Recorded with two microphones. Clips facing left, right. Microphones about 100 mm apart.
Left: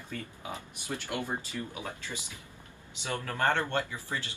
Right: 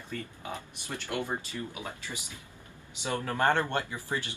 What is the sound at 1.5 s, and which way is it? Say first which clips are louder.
Speech: even; 5° right (ahead or behind).